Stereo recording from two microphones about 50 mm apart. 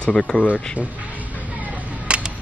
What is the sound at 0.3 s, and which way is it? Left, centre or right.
Speech, left.